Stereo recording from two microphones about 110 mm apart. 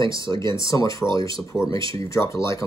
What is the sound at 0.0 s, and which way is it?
Speech, 50° right (ahead or behind).